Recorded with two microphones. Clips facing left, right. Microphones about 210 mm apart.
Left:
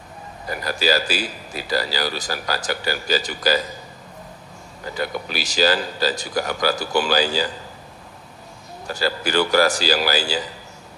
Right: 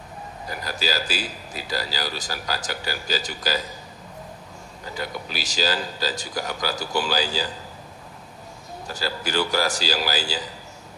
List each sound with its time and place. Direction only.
0.5 s a man's voice: 65° left (ahead or behind)
5.0 s a man's voice: 65° left (ahead or behind)
8.8 s a man's voice: 65° left (ahead or behind)